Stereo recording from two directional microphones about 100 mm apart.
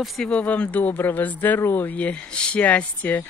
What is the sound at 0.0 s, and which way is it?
Speech, 10° left (ahead or behind).